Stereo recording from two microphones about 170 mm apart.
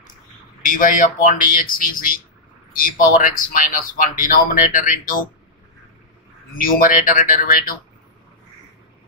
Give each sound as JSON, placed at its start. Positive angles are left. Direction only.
{"t": 0.6, "sound": "speech", "side_deg": 50}
{"t": 6.6, "sound": "speech", "side_deg": 50}